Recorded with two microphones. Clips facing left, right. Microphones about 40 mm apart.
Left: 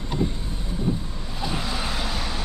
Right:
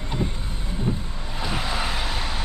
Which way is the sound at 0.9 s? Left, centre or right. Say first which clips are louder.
Left 1 dB; right.